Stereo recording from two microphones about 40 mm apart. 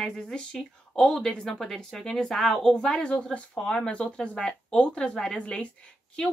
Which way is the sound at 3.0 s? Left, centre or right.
Left.